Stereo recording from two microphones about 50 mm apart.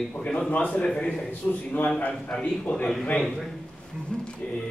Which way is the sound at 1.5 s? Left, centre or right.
Left.